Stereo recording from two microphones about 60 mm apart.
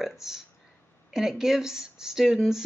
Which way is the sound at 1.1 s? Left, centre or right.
Centre.